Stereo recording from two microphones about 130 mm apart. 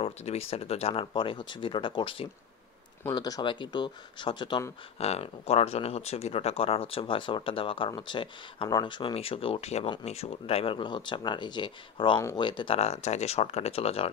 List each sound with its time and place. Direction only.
0.0 s speech: 50° left (ahead or behind)
3.0 s speech: 30° left (ahead or behind)
4.9 s speech: 50° left (ahead or behind)